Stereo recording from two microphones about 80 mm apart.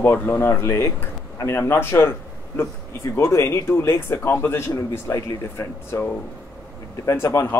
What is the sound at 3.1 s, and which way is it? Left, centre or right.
Speech, left.